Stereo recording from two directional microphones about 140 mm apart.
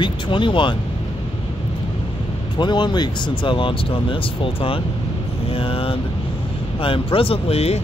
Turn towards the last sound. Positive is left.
turn(degrees=50)  # may be behind; listen again after turning